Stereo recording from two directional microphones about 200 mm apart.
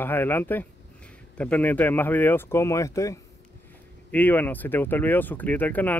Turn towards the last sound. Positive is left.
turn(degrees=10)  # may be behind; listen again after turning